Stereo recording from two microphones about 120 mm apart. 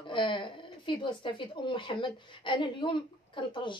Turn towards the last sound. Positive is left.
turn(degrees=45)  # may be behind; listen again after turning